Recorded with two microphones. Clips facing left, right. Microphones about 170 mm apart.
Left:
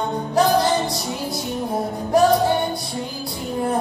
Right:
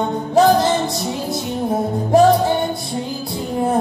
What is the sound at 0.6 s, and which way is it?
Music, 25° right (ahead or behind).